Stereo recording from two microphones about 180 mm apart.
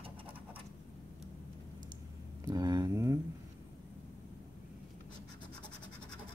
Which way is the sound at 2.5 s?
20° right (ahead or behind).